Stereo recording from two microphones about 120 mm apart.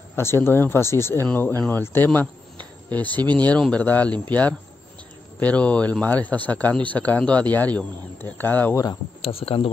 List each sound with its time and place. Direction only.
0.1 s speech: 20° left (ahead or behind)
9.2 s speech: 50° left (ahead or behind)